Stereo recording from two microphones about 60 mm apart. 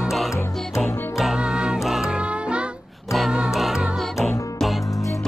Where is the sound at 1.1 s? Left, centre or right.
Centre.